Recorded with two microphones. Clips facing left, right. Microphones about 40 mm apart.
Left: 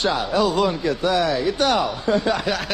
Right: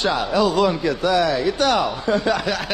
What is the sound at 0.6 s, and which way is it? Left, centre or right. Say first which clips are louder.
Speech: right 2 dB; right.